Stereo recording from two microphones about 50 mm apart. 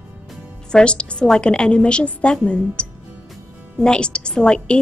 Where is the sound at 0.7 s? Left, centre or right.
Centre.